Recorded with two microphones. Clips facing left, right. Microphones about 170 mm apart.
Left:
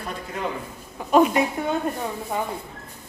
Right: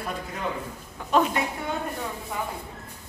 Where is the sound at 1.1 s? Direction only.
15° left (ahead or behind).